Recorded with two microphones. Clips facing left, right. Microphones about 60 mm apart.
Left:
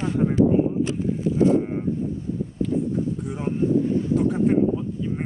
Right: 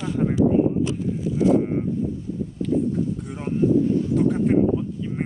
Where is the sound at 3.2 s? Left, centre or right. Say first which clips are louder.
Right 1 dB; centre.